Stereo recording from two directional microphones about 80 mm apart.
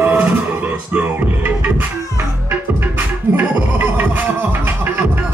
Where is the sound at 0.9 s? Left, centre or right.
Right.